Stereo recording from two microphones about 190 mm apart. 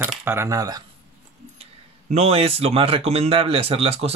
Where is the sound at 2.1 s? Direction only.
35° right (ahead or behind).